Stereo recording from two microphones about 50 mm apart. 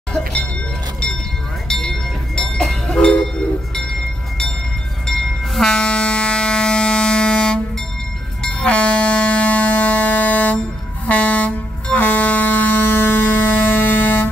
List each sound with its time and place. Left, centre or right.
0.1 s a sound: centre
1.7 s train: centre
5.0 s train: centre
8.4 s air horn: centre; by 14.3 s left